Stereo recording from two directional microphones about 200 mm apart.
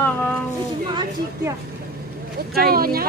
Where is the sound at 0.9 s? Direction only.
20° right (ahead or behind).